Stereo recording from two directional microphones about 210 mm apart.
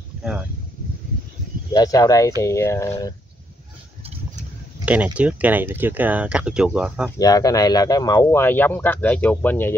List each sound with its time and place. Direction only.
1.7 s speech: 15° left (ahead or behind)
4.8 s speech: 5° right (ahead or behind)
7.2 s speech: 15° left (ahead or behind)